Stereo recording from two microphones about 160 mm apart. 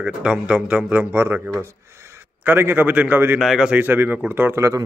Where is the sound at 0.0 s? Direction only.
5° right (ahead or behind).